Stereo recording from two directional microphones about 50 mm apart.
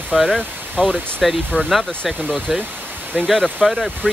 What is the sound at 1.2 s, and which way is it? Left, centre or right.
Speech, centre.